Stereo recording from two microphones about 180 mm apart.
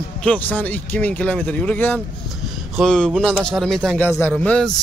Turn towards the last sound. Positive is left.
turn(degrees=5)  # may be behind; listen again after turning